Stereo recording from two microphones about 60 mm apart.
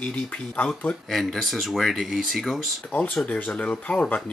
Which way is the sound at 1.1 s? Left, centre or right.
Centre.